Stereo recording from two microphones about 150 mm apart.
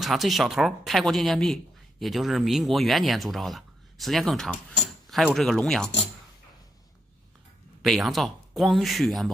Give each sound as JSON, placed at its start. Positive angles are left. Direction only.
{"t": 0.0, "sound": "speech", "side_deg": 0}
{"t": 7.8, "sound": "speech", "side_deg": 0}